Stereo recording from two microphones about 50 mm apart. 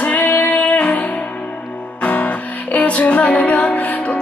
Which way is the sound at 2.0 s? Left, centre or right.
Left.